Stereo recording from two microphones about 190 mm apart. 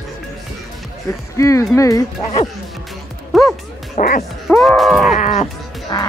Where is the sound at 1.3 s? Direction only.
15° left (ahead or behind).